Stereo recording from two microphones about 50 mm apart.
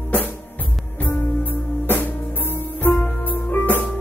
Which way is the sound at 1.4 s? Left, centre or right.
Left.